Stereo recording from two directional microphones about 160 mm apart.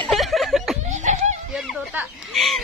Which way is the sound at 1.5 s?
5° right (ahead or behind).